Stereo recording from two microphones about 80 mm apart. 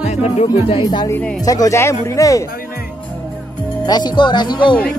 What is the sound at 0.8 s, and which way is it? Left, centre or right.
Speech, left.